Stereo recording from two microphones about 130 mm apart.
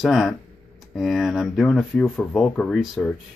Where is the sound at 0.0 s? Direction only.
Centre (ahead or behind).